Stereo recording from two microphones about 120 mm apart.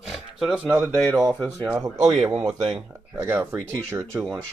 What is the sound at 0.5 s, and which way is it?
Speech, 10° right (ahead or behind).